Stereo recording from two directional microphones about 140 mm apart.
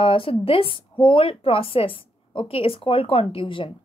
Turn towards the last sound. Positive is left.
turn(degrees=40)  # may be behind; listen again after turning